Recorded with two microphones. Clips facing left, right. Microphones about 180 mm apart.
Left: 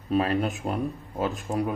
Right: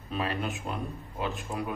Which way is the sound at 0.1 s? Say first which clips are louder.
Left 8 dB; 40° left (ahead or behind).